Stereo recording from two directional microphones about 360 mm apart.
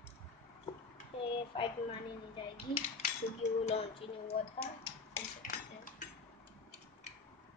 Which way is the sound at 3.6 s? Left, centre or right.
Centre.